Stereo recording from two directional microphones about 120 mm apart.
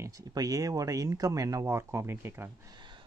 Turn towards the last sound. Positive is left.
turn(degrees=-40)  # may be behind; listen again after turning